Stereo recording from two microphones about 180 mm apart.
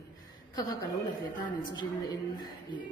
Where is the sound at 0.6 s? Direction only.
20° left (ahead or behind).